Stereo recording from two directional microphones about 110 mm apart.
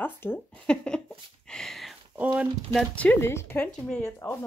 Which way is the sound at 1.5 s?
5° left (ahead or behind).